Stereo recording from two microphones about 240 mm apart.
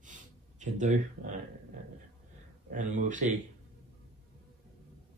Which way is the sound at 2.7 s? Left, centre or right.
Right.